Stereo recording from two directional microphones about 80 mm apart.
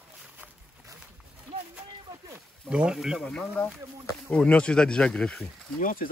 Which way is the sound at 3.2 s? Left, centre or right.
Centre.